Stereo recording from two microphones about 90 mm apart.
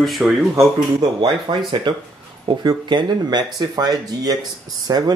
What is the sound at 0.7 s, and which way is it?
Speech, 50° right (ahead or behind).